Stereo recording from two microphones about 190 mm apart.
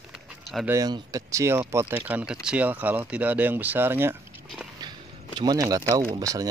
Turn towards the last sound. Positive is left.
turn(degrees=-20)  # may be behind; listen again after turning